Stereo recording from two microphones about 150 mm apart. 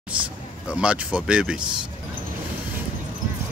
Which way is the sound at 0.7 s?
5° right (ahead or behind).